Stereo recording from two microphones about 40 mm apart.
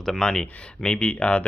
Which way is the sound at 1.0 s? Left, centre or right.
Left.